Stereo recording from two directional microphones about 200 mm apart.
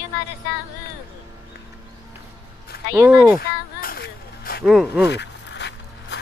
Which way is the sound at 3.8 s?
50° left (ahead or behind).